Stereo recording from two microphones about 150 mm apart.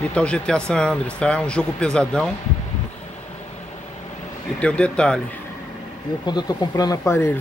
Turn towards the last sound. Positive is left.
turn(degrees=20)  # may be behind; listen again after turning